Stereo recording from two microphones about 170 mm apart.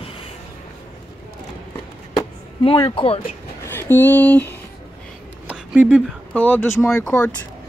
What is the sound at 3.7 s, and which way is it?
Speech, 10° left (ahead or behind).